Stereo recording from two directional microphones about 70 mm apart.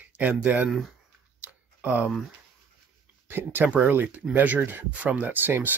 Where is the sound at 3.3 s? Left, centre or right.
Right.